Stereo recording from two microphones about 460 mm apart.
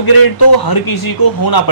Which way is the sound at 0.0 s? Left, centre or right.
Left.